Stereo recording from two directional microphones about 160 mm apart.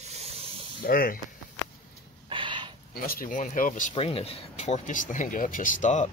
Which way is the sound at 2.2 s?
30° right (ahead or behind).